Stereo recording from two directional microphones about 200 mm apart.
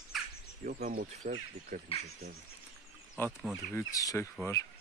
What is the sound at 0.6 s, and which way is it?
Speech, 45° right (ahead or behind).